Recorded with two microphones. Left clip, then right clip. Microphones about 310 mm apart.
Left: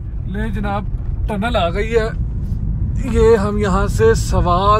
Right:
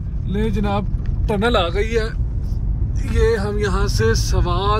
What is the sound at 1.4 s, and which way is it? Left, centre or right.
Speech, right.